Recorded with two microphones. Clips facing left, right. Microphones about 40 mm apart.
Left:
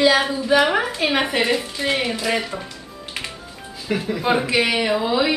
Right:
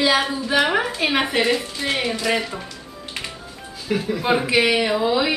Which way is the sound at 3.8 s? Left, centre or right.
Centre.